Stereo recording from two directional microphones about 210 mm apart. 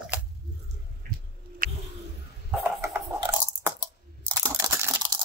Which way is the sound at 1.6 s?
40° right (ahead or behind).